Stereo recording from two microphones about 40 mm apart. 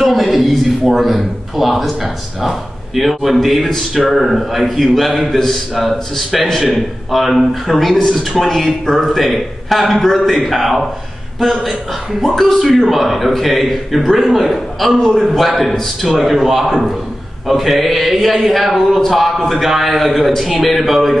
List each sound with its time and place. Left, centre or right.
0.0 s a man's voice: centre
3.3 s mantra: centre
12.8 s mantra: centre